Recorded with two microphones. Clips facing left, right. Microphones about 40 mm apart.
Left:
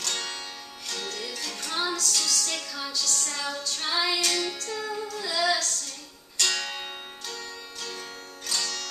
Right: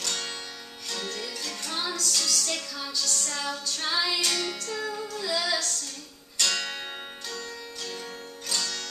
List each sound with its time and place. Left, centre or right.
0.0 s music: centre
2.0 s music: centre